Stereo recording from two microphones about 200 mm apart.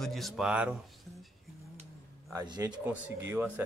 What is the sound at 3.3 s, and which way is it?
Speech, 10° right (ahead or behind).